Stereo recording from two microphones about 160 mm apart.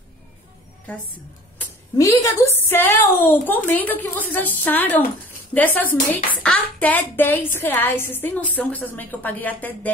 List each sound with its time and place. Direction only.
1.6 s a woman's voice: 15° left (ahead or behind)